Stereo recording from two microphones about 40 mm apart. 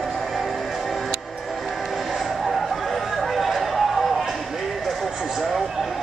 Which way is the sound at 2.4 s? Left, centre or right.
Centre.